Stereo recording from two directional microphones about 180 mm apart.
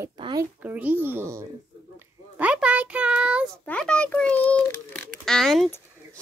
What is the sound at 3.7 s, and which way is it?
A child's voice, 5° left (ahead or behind).